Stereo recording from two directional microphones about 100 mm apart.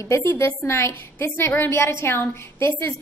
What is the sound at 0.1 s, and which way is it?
A woman's voice, 30° left (ahead or behind).